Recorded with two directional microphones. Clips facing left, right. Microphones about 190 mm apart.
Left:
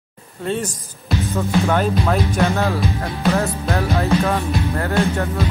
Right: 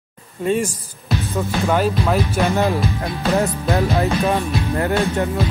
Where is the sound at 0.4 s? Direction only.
10° right (ahead or behind).